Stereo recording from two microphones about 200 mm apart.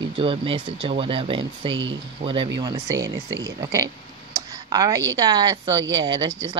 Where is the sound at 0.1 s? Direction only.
25° right (ahead or behind).